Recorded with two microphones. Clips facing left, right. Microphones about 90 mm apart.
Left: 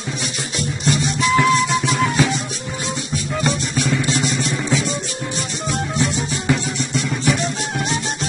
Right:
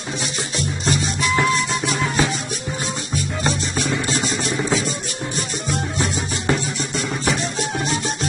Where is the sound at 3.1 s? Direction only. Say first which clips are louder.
Left 2 dB; 35° right (ahead or behind).